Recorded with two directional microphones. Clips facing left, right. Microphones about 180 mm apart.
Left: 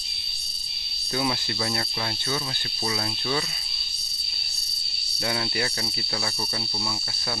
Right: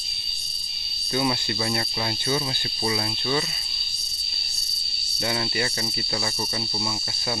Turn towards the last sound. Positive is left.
turn(degrees=0)  # may be behind; listen again after turning